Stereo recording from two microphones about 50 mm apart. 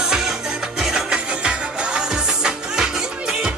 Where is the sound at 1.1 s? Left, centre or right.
Right.